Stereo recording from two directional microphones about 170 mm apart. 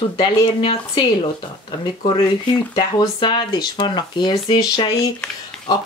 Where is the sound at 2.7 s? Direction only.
30° left (ahead or behind).